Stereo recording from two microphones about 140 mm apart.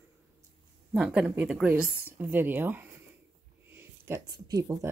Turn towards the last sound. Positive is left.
turn(degrees=-25)  # may be behind; listen again after turning